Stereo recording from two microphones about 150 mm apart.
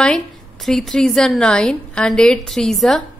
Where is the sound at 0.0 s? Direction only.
5° left (ahead or behind).